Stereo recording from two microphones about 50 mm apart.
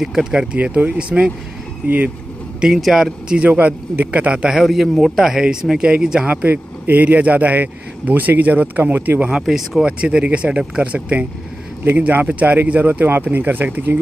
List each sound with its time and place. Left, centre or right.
0.0 s speech: centre
0.6 s a man's voice: right
2.8 s a man's voice: centre
3.4 s a man's voice: right
4.6 s a man's voice: centre; by 6.3 s right
6.3 s speech: right
9.3 s speech: centre
9.8 s a man's voice: right